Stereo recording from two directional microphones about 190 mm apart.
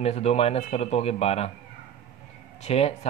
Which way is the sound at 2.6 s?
35° left (ahead or behind).